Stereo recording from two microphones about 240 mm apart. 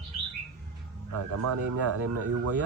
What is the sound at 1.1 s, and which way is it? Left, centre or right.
Speech, right.